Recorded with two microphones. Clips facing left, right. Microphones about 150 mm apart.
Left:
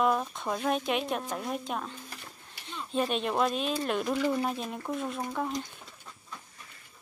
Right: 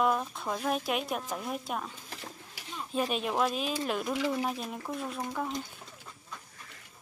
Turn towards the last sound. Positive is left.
turn(degrees=0)  # may be behind; listen again after turning